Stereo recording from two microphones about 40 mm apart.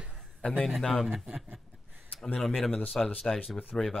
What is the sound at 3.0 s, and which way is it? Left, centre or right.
Gasp, centre.